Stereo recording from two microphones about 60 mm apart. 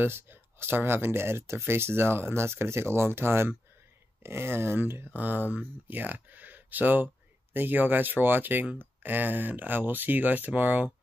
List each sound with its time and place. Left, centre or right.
0.0 s speech: right